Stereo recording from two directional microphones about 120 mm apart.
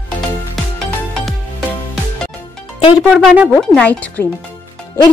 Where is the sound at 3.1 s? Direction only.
Centre (ahead or behind).